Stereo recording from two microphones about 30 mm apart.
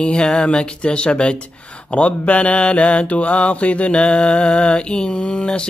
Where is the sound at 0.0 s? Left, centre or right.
Left.